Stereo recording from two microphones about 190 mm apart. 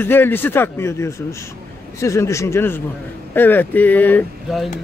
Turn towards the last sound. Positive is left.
turn(degrees=10)  # may be behind; listen again after turning